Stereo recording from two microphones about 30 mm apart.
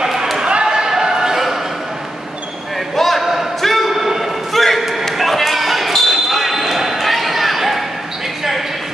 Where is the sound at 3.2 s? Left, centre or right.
Centre.